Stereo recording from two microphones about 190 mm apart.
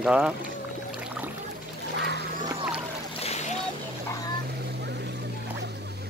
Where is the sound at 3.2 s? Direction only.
35° left (ahead or behind).